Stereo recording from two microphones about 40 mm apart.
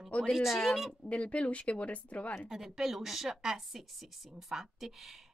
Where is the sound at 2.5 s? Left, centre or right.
Centre.